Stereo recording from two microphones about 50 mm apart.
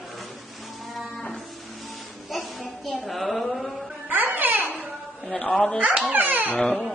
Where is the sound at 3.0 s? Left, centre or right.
Centre.